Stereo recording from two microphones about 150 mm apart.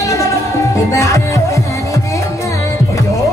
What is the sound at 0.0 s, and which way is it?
Music, 20° left (ahead or behind).